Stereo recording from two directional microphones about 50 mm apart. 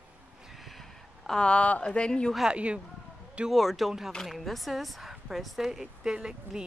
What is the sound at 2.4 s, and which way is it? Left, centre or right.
Speech, right.